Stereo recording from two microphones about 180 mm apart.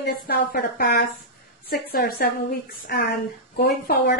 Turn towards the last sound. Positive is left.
turn(degrees=60)  # may be behind; listen again after turning